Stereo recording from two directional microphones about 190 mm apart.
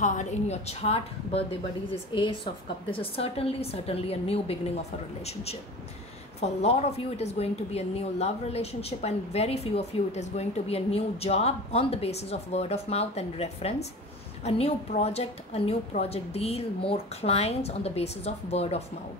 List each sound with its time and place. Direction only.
0.0 s speech: 40° left (ahead or behind)